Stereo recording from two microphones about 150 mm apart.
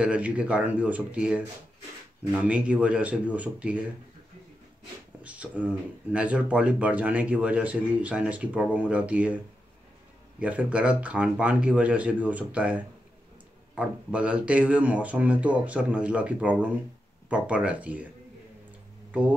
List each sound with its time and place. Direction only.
0.0 s speech: 10° right (ahead or behind)
2.4 s speech: 10° right (ahead or behind)
5.2 s speech: 10° right (ahead or behind)
10.4 s speech: 10° right (ahead or behind)